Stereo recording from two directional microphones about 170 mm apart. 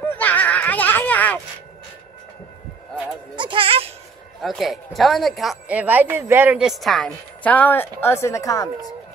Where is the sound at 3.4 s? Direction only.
30° right (ahead or behind).